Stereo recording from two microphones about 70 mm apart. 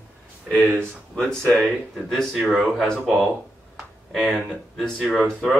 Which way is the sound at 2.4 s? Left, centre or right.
Centre.